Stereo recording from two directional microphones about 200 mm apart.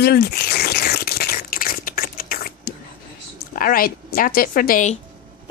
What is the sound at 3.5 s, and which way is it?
A woman's voice, 45° left (ahead or behind).